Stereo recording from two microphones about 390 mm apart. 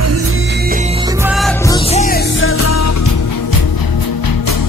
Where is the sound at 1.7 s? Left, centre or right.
Centre; by 3.1 s left.